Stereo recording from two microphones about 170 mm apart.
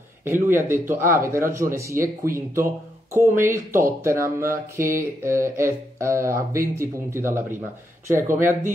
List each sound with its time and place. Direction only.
0.2 s speech: 15° right (ahead or behind)